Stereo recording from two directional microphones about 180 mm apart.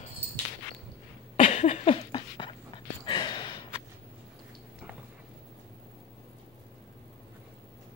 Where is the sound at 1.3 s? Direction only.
35° left (ahead or behind).